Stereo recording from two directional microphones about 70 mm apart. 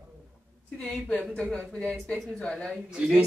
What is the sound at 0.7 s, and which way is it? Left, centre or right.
Speech, centre.